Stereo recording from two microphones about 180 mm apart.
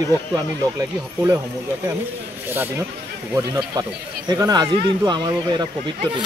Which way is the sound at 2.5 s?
10° right (ahead or behind).